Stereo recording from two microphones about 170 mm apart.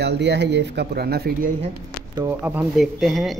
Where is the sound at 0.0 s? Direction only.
85° right; by 1.5 s 65° right (ahead or behind).